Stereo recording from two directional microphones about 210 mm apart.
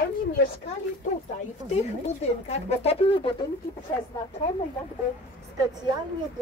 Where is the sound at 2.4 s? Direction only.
30° left (ahead or behind).